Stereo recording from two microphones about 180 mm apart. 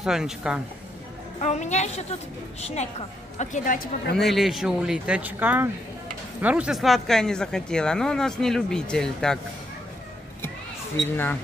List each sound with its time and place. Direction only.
0.0 s speech: 5° right (ahead or behind)
1.4 s a woman's voice: 40° left (ahead or behind); by 4.2 s 60° left (ahead or behind)
4.2 s speech: centre (ahead or behind)